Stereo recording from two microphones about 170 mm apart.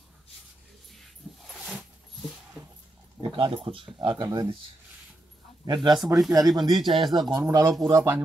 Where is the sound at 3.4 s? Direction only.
30° right (ahead or behind).